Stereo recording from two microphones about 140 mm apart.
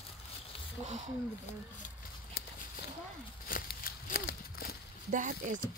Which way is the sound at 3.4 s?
90° left.